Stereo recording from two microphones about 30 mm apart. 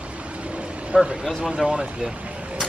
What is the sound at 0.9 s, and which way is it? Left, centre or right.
Speech, right.